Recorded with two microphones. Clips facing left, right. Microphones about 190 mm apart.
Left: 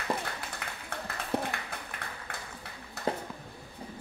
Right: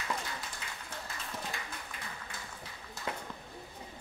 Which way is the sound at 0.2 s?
60° left (ahead or behind).